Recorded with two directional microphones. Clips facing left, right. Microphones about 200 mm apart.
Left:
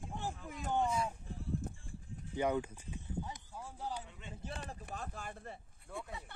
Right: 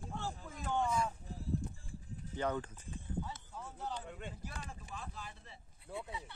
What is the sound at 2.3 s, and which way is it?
Speech, 10° left (ahead or behind).